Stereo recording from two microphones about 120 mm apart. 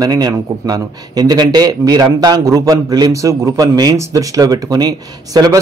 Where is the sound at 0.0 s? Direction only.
30° right (ahead or behind).